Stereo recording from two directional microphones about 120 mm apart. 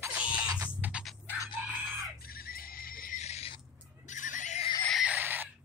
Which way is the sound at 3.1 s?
65° left (ahead or behind).